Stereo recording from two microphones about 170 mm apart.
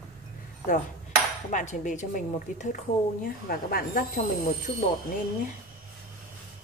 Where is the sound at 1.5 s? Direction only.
45° left (ahead or behind).